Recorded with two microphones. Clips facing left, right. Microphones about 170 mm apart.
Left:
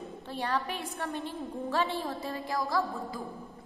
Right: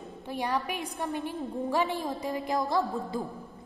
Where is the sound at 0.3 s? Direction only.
15° right (ahead or behind).